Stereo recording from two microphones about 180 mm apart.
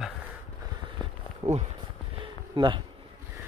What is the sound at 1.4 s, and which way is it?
Speech, 20° right (ahead or behind).